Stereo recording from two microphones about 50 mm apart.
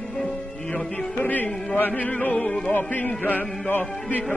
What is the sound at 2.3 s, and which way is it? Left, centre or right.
Music, centre.